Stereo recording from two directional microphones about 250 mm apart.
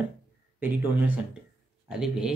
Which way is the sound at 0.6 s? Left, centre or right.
Centre.